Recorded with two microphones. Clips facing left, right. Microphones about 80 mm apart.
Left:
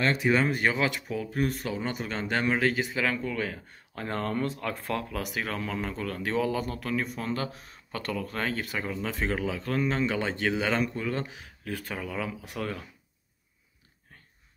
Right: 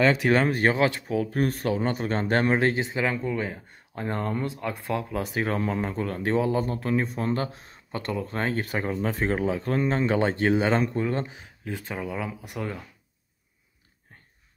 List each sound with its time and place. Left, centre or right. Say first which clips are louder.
0.3 s speech: right 3 dB; right; by 12.8 s centre